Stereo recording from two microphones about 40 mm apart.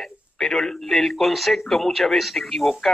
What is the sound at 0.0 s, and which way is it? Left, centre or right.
Speech, centre.